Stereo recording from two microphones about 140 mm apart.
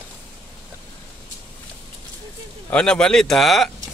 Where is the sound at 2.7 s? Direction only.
5° left (ahead or behind).